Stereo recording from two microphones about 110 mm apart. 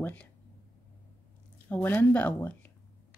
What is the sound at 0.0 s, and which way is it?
Speech, 15° left (ahead or behind).